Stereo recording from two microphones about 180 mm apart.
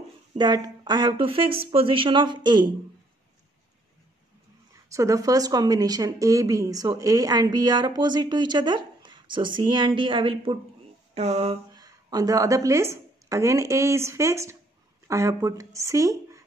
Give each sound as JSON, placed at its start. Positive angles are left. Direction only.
{"t": 0.4, "sound": "speech", "side_deg": -25}
{"t": 4.9, "sound": "speech", "side_deg": -20}
{"t": 11.1, "sound": "a sound", "side_deg": -35}
{"t": 11.7, "sound": "a woman's voice", "side_deg": -20}